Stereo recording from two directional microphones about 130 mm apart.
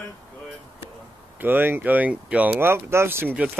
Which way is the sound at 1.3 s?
15° right (ahead or behind).